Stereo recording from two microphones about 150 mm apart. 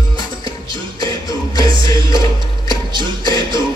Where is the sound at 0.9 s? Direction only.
25° left (ahead or behind).